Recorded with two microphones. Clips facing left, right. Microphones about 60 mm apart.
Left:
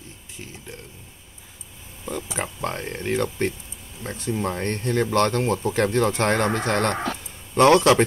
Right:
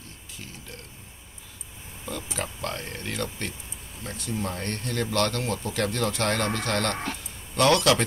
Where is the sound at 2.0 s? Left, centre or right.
Left.